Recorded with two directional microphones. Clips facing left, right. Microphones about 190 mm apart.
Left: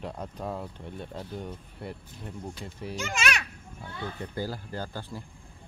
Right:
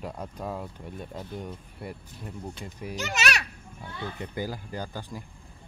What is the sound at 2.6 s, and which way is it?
Speech, 10° right (ahead or behind).